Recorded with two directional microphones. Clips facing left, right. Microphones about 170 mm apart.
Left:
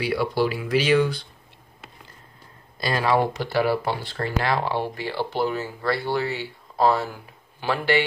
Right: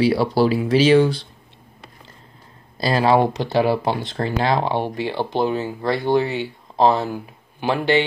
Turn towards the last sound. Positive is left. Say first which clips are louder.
# right 4 dB
turn(degrees=-20)  # may be behind; listen again after turning